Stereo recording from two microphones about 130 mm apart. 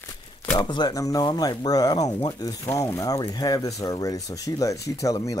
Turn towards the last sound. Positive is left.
turn(degrees=25)  # may be behind; listen again after turning